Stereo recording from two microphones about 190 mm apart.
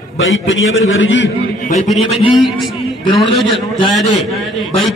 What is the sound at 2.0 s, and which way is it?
Speech, 25° left (ahead or behind).